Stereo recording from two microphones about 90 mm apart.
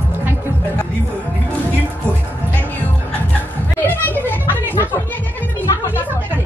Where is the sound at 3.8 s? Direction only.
20° left (ahead or behind).